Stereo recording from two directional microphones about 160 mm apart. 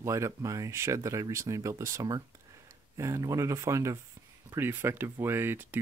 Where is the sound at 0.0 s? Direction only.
20° right (ahead or behind).